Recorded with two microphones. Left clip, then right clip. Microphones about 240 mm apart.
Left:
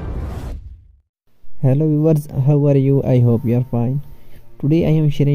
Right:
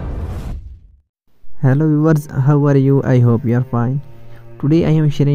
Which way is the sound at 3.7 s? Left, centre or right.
Right.